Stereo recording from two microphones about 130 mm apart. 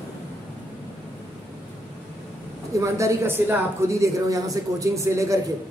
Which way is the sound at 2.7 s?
25° right (ahead or behind).